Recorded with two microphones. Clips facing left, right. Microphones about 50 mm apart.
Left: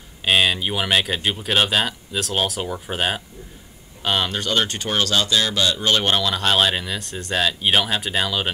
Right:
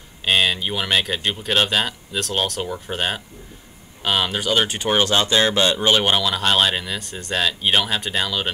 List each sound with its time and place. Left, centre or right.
0.2 s speech: centre; by 5.9 s right
5.9 s speech: centre